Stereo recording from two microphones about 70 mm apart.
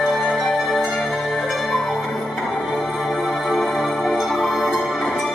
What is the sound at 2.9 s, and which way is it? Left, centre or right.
Music, centre.